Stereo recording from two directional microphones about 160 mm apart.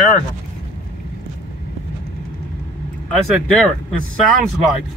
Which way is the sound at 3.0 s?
5° left (ahead or behind).